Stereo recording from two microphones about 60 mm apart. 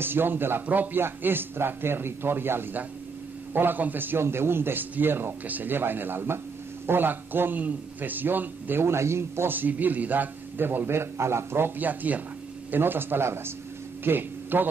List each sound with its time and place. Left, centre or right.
0.0 s a man's voice: right
9.5 s a man's voice: right
11.8 s a man's voice: right